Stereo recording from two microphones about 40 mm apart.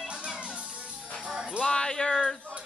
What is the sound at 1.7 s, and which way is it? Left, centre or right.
Music, centre.